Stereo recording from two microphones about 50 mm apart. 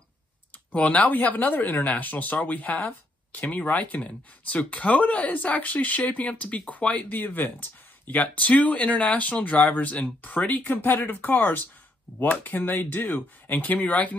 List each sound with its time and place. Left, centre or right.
0.7 s speech: left